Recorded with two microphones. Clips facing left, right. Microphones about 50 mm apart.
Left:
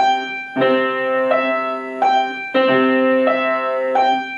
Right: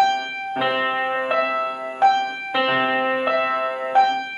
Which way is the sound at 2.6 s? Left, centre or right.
Centre.